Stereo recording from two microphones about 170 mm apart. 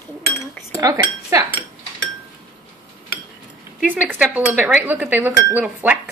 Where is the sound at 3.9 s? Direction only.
10° right (ahead or behind).